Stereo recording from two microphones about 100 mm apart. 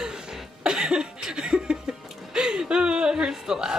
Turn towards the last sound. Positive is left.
turn(degrees=-5)  # may be behind; listen again after turning